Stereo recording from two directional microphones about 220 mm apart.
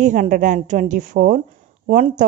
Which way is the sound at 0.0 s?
35° right (ahead or behind).